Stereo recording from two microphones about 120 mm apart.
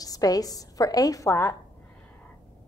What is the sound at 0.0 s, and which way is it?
A woman's voice, 30° left (ahead or behind).